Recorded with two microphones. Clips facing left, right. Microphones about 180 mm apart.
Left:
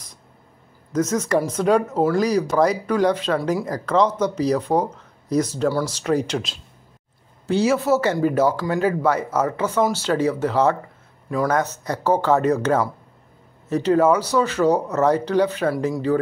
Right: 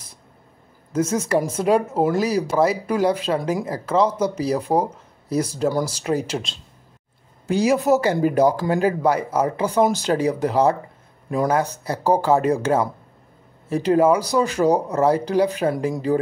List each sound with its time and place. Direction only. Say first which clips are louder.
0.9 s speech: even; 10° right (ahead or behind)
11.2 s a man's voice: right 1 dB; 25° right (ahead or behind)
11.5 s speech: even; 10° right (ahead or behind)